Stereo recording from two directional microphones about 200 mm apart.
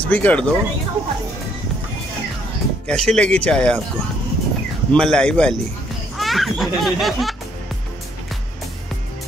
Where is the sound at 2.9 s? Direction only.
5° left (ahead or behind).